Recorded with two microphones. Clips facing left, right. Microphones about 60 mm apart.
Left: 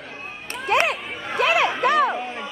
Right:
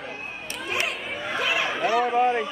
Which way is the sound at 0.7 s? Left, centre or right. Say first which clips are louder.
Left 8 dB; left.